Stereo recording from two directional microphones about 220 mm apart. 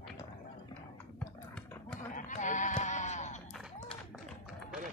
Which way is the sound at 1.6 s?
5° left (ahead or behind).